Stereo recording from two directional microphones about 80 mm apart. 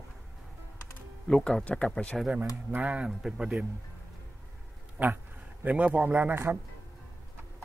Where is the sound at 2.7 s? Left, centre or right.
Centre.